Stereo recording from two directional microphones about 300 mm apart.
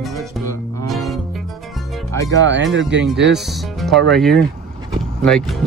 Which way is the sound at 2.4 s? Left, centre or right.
Right.